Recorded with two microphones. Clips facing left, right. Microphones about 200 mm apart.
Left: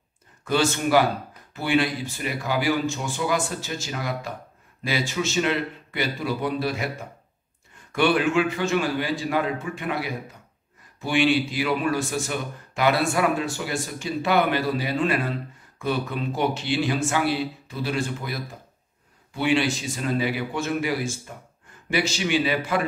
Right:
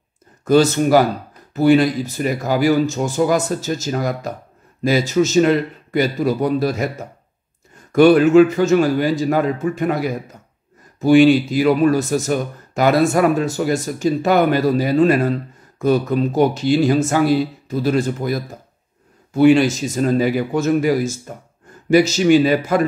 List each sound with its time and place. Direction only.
0.5 s speech: 40° right (ahead or behind)